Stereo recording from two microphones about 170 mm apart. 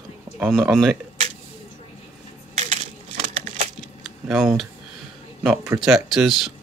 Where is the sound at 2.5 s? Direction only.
40° right (ahead or behind).